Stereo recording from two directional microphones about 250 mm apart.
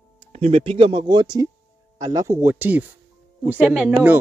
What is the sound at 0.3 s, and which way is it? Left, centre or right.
Speech, right.